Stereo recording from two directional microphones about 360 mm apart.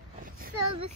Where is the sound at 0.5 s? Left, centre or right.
Right.